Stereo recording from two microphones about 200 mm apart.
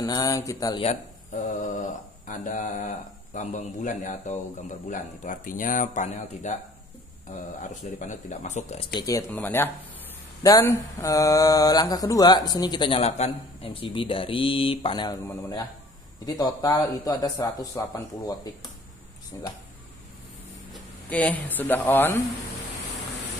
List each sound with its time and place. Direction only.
0.0 s speech: 20° left (ahead or behind)
0.8 s a man's voice: 40° left (ahead or behind)
8.9 s speech: 15° left (ahead or behind)
20.7 s speech: 10° left (ahead or behind)